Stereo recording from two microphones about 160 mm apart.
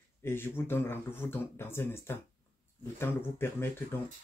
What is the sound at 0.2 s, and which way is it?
Speech, 15° left (ahead or behind).